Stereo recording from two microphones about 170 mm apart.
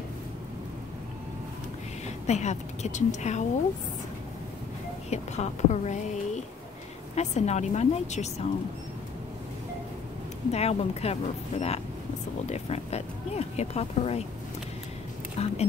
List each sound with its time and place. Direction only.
2.2 s a woman's voice: 45° left (ahead or behind)
5.1 s a woman's voice: 40° left (ahead or behind)
10.5 s speech: 40° left (ahead or behind)
15.4 s speech: 40° left (ahead or behind)